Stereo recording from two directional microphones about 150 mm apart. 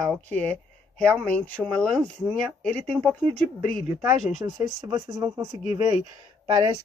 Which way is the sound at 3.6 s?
70° left (ahead or behind).